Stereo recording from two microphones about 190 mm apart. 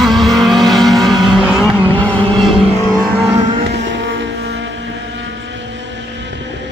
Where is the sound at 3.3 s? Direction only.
20° right (ahead or behind).